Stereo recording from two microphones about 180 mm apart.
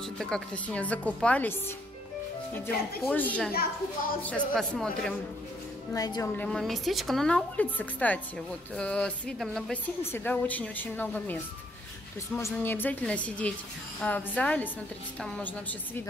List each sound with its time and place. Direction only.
0.0 s speech: 5° left (ahead or behind)
3.0 s a woman's voice: 10° left (ahead or behind)
5.9 s a woman's voice: 20° left (ahead or behind)
6.3 s a woman's voice: 5° left (ahead or behind)
12.4 s speech: 15° left (ahead or behind)